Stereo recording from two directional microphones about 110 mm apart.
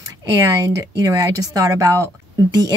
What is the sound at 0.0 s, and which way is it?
Speech, 30° right (ahead or behind).